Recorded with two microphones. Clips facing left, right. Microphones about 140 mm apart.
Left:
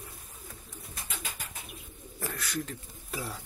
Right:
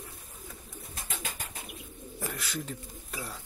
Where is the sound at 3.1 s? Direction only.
Centre (ahead or behind).